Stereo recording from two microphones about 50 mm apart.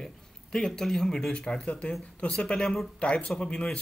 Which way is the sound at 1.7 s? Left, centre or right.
Left.